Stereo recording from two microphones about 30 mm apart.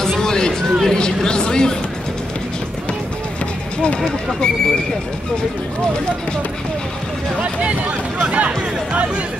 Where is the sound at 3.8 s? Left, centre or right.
Left.